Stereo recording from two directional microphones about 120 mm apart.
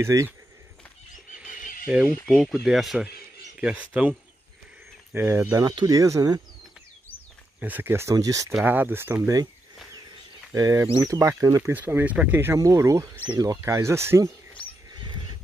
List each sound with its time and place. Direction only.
0.0 s speech: 25° right (ahead or behind)
1.9 s speech: 10° right (ahead or behind)
5.1 s speech: 20° right (ahead or behind)
7.6 s speech: 15° right (ahead or behind)
8.6 s speech: 15° right (ahead or behind)
10.5 s speech: 30° right (ahead or behind)
11.7 s speech: 15° right (ahead or behind)